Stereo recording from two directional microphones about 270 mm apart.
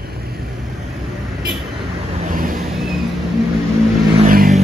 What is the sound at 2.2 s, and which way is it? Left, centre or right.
Vehicle, right.